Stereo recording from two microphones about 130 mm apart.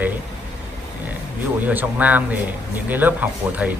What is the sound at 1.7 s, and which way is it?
Speech, 10° right (ahead or behind).